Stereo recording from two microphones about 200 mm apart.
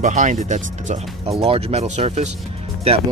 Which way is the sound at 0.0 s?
40° right (ahead or behind).